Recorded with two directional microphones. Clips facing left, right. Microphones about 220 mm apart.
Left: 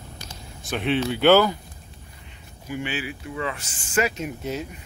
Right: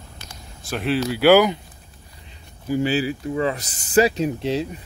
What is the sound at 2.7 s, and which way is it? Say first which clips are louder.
Speech: right 9 dB; 35° right (ahead or behind).